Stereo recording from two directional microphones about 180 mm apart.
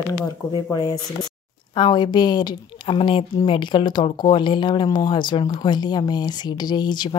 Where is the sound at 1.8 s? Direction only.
25° left (ahead or behind).